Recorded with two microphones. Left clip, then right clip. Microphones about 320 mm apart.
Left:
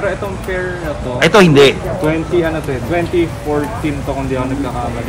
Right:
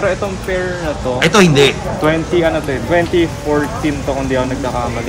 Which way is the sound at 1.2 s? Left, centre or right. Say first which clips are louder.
Left 3 dB; centre.